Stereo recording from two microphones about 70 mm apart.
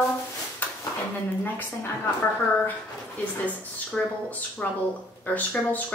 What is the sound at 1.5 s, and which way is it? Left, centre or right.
Speech, left.